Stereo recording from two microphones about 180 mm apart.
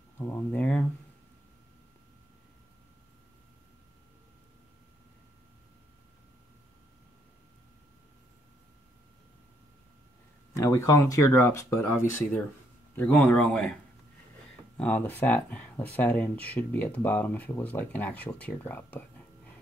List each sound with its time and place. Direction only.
0.2 s speech: 10° left (ahead or behind)
10.5 s speech: 15° left (ahead or behind)
14.8 s speech: 10° left (ahead or behind)